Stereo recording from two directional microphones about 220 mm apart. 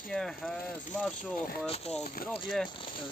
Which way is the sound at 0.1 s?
Centre (ahead or behind).